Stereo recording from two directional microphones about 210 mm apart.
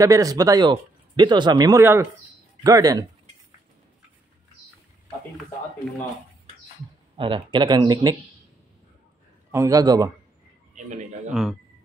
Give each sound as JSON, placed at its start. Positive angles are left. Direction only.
{"t": 0.0, "sound": "speech", "side_deg": -15}
{"t": 7.2, "sound": "speech", "side_deg": -25}
{"t": 9.5, "sound": "speech", "side_deg": -15}
{"t": 10.7, "sound": "speech", "side_deg": -35}